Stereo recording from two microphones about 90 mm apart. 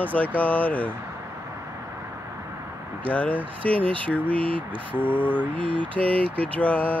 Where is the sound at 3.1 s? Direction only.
15° left (ahead or behind).